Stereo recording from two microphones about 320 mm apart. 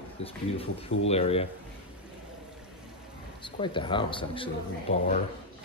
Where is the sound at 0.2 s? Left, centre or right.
Centre.